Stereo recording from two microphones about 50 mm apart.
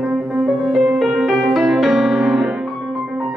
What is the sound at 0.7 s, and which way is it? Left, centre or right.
Music, centre.